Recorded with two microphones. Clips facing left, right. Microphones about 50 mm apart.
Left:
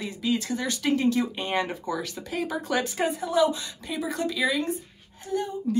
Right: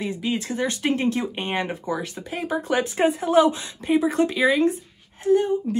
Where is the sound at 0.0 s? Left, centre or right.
Right.